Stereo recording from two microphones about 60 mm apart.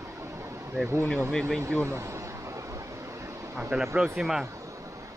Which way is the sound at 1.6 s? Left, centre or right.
Right.